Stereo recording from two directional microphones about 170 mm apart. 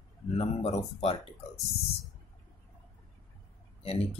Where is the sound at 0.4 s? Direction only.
40° left (ahead or behind).